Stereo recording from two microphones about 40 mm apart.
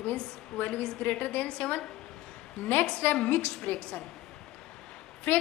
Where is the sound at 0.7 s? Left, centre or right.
Left.